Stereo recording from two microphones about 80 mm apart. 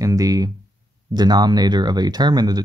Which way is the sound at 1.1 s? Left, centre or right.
Right.